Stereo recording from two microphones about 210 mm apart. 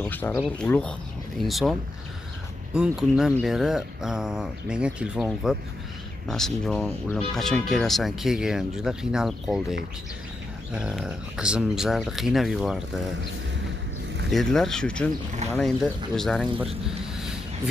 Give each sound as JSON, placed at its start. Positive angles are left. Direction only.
{"t": 0.0, "sound": "speech", "side_deg": 10}
{"t": 14.3, "sound": "speech", "side_deg": 0}
{"t": 16.8, "sound": "a sound", "side_deg": -5}